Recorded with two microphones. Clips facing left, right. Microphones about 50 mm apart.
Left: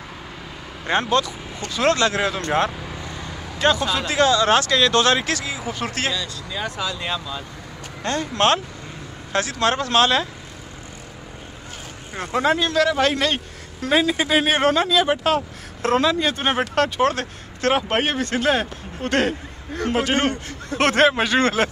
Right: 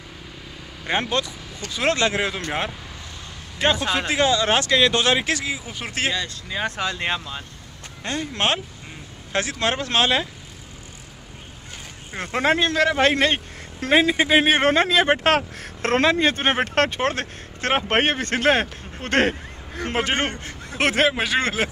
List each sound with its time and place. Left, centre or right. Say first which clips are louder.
0.9 s speech: left 4 dB; centre
3.5 s speech: left 2 dB; right
3.8 s speech: even; right
4.1 s speech: left 3 dB; right
6.1 s speech: right 1 dB; right
8.0 s speech: left 4 dB; centre
12.2 s speech: even; right
17.9 s speech: right 1 dB; right
20.7 s speech: left 3 dB; centre